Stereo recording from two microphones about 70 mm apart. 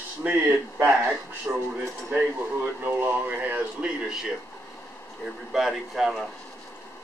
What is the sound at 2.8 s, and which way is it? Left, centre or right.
Speech, right.